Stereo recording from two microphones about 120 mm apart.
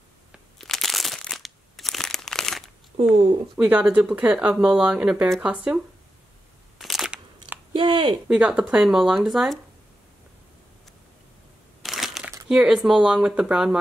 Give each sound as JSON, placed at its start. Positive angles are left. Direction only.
{"t": 0.6, "sound": "crumpling", "side_deg": 0}
{"t": 3.5, "sound": "speech", "side_deg": -10}
{"t": 6.8, "sound": "crunch", "side_deg": 0}
{"t": 7.7, "sound": "speech", "side_deg": -40}
{"t": 8.3, "sound": "speech", "side_deg": -10}
{"t": 11.8, "sound": "crushing", "side_deg": 0}
{"t": 12.4, "sound": "speech", "side_deg": -5}